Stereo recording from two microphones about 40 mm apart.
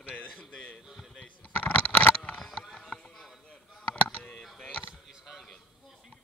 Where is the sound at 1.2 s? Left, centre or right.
Left.